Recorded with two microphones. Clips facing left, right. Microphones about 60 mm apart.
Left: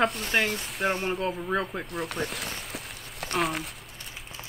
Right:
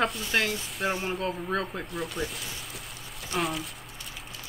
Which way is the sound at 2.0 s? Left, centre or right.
Left.